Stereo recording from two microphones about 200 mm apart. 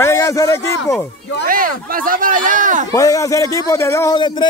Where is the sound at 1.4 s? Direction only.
45° right (ahead or behind).